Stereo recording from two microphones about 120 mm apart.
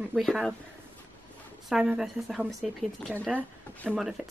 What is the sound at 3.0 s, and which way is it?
Speech, 10° left (ahead or behind).